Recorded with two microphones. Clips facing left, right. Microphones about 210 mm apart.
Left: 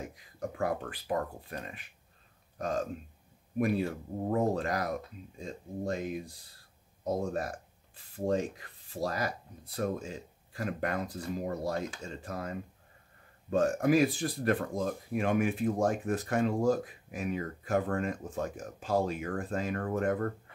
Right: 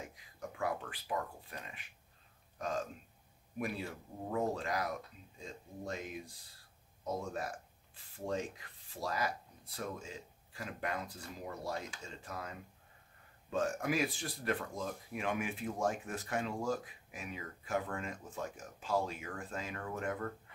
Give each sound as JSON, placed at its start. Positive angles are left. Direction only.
{"t": 0.4, "sound": "speech", "side_deg": 50}
{"t": 7.1, "sound": "speech", "side_deg": 40}
{"t": 9.8, "sound": "speech", "side_deg": 50}